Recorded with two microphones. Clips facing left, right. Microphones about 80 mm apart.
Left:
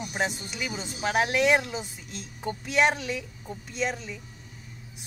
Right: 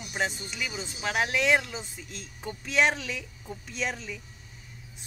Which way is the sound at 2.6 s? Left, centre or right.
Centre.